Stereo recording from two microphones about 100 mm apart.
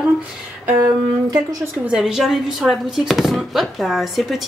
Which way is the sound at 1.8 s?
5° right (ahead or behind).